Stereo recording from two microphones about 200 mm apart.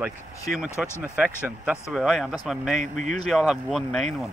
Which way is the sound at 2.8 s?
40° right (ahead or behind).